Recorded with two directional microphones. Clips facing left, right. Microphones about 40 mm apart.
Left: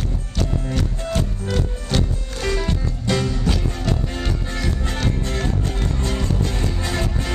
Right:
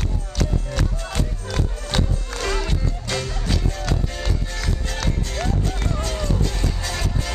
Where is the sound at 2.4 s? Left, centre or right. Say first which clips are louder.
Left 2 dB; centre.